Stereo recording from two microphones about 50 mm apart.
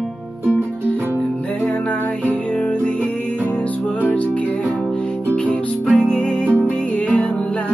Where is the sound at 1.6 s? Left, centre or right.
Left.